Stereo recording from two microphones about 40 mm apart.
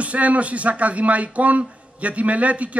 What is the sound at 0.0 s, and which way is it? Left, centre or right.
A man's voice, right.